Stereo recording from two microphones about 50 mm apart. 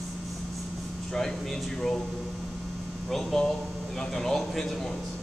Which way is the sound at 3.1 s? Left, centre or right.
Centre.